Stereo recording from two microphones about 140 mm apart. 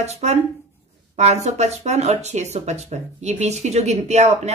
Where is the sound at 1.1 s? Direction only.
55° right (ahead or behind).